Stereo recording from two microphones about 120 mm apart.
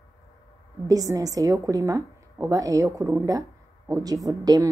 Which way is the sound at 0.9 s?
30° right (ahead or behind).